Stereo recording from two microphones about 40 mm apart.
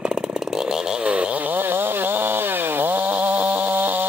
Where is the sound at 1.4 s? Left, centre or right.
Right.